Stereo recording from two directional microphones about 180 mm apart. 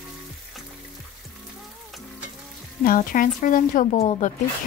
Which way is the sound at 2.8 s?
50° left (ahead or behind).